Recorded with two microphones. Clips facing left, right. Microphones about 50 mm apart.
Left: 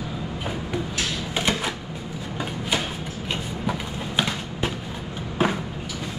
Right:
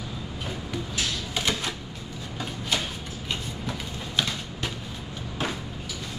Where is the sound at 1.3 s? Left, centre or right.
Centre.